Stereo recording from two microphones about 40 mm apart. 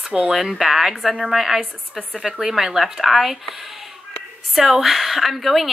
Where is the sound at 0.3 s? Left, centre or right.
Centre.